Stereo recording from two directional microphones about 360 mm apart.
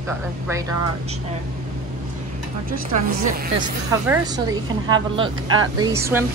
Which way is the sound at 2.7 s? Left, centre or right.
Right.